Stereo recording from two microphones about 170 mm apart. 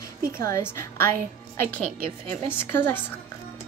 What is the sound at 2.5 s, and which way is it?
Speech, 10° left (ahead or behind).